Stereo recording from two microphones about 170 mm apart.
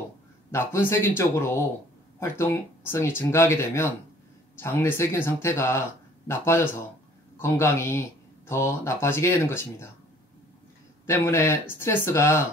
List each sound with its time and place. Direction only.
0.5 s speech: 15° left (ahead or behind)
11.1 s speech: 15° left (ahead or behind)